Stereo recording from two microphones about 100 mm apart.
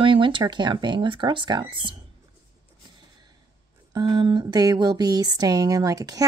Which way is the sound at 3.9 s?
45° right (ahead or behind).